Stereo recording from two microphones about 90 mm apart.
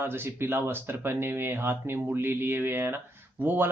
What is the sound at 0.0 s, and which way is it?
Speech, 25° right (ahead or behind).